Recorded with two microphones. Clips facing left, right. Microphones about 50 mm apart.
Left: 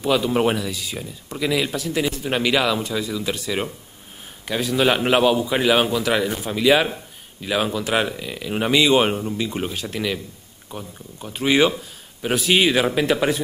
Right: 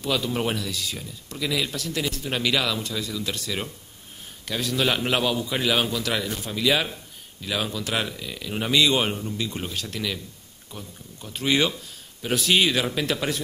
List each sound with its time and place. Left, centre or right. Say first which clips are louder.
0.0 s speech: left 7 dB; centre